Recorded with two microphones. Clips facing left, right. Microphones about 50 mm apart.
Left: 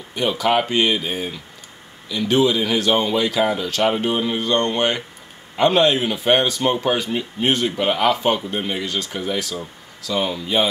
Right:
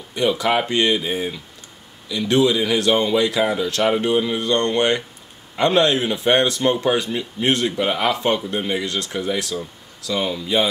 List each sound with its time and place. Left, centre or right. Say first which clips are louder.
0.2 s speech: even; centre